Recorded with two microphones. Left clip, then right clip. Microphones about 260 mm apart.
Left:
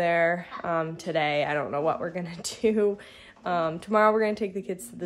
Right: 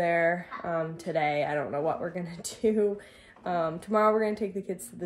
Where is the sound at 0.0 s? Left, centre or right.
Centre.